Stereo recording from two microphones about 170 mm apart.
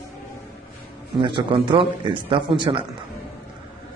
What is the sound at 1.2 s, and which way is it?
Speech, 30° right (ahead or behind).